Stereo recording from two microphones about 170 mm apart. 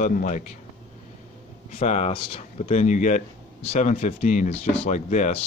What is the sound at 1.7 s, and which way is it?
Speech, 40° left (ahead or behind).